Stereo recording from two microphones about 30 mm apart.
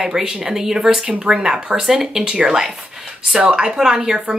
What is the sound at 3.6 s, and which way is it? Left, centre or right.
Speech, right.